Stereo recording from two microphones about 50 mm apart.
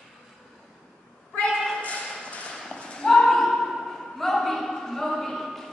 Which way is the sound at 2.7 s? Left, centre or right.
Centre.